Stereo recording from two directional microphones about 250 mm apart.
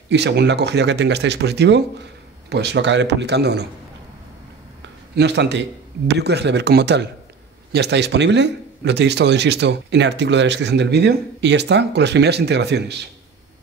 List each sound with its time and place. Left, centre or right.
0.1 s a man's voice: right
5.1 s a man's voice: right